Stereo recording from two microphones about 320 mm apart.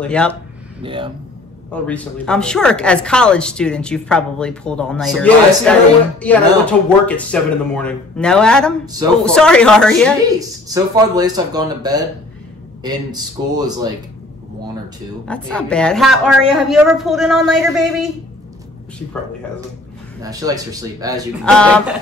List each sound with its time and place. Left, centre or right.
0.0 s a woman's voice: centre
0.8 s speech: centre
1.7 s a woman's voice: centre
10.7 s speech: centre
15.2 s a woman's voice: centre
20.2 s speech: centre
21.5 s a woman's voice: centre